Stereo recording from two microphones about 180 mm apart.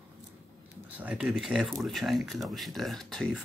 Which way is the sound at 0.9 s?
5° right (ahead or behind).